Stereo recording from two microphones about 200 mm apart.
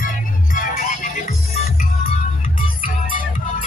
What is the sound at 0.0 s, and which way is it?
Music, 45° left (ahead or behind).